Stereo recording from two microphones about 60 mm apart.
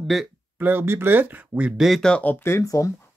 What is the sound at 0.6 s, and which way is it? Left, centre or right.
Speech, right.